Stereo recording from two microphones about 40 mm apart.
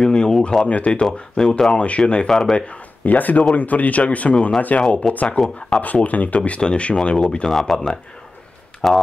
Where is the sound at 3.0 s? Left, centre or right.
Left.